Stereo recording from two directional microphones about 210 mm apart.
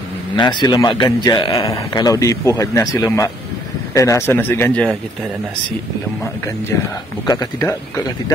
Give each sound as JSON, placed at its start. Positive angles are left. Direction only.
{"t": 0.4, "sound": "a man's voice", "side_deg": 20}
{"t": 7.2, "sound": "a man's voice", "side_deg": 15}